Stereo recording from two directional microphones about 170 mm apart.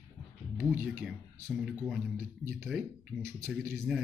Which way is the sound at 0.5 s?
10° right (ahead or behind).